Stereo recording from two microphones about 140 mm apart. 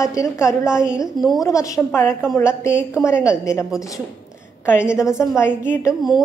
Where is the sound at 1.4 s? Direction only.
25° left (ahead or behind).